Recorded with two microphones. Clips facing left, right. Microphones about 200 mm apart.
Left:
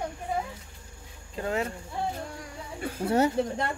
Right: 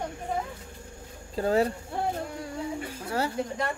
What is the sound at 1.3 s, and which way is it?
Speech, 35° right (ahead or behind).